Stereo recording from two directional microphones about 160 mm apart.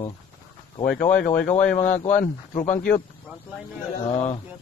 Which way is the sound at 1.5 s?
50° left (ahead or behind).